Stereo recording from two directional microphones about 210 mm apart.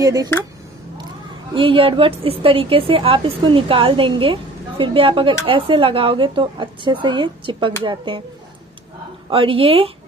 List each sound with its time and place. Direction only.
0.0 s speech: 15° right (ahead or behind)
1.5 s a woman's voice: 25° right (ahead or behind)
9.3 s a woman's voice: 25° right (ahead or behind)